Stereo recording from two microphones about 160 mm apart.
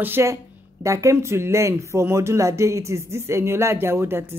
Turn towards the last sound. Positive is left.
turn(degrees=-15)  # may be behind; listen again after turning